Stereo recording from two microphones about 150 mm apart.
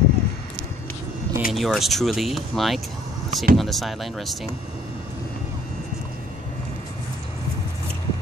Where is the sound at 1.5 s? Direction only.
Centre (ahead or behind).